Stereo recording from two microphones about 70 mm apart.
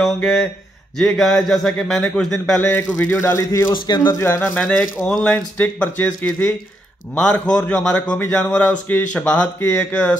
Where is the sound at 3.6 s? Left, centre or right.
Left.